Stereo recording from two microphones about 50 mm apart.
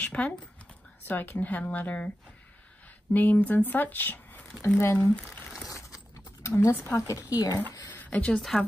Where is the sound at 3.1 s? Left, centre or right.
Left.